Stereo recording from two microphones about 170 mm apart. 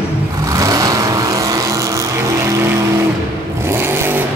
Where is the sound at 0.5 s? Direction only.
20° right (ahead or behind).